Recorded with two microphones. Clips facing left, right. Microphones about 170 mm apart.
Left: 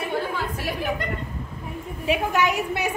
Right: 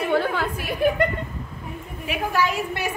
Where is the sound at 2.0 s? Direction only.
15° left (ahead or behind).